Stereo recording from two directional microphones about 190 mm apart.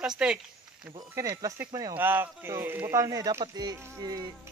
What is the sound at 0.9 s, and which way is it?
Speech, 15° right (ahead or behind).